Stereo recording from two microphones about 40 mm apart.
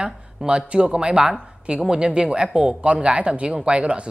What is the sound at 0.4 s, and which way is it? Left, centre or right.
Speech, right.